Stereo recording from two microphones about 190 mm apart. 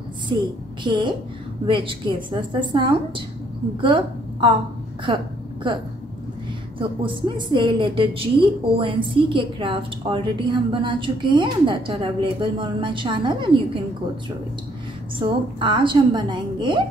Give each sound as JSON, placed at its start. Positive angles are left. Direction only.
{"t": 0.3, "sound": "a woman's voice", "side_deg": -20}
{"t": 6.8, "sound": "a woman's voice", "side_deg": -25}
{"t": 15.1, "sound": "a woman's voice", "side_deg": -25}